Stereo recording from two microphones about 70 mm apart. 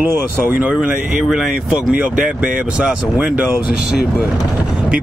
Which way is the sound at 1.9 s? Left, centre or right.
Centre.